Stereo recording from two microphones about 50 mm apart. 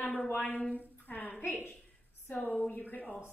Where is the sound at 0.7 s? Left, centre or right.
Left.